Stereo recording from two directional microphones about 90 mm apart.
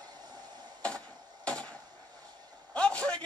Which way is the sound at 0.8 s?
15° left (ahead or behind).